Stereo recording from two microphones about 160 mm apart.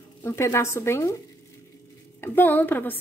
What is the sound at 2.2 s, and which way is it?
Speech, 10° left (ahead or behind).